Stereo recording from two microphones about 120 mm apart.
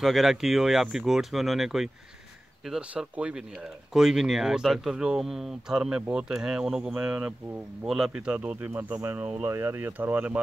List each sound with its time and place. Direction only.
0.0 s speech: centre (ahead or behind)